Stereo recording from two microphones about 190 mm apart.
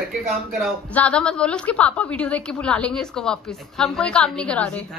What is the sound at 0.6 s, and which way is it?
A woman's voice, 5° left (ahead or behind).